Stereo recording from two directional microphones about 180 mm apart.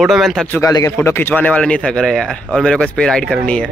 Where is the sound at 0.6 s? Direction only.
15° left (ahead or behind).